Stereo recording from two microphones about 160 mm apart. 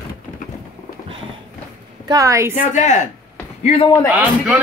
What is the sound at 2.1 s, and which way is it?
Speech, 20° right (ahead or behind).